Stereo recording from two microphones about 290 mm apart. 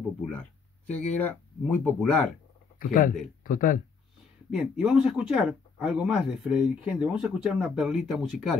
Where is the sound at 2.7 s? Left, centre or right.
Left.